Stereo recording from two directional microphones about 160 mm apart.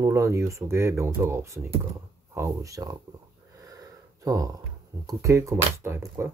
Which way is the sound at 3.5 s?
20° right (ahead or behind).